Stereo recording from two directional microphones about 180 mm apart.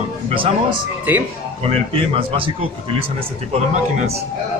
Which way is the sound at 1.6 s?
35° right (ahead or behind).